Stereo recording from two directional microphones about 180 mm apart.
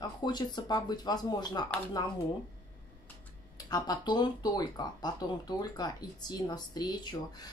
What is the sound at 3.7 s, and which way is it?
Speech, 25° left (ahead or behind).